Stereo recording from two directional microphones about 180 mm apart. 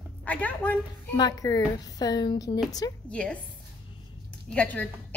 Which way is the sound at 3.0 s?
5° left (ahead or behind).